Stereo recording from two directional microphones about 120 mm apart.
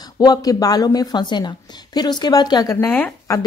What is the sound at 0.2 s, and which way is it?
A woman's voice, 30° left (ahead or behind).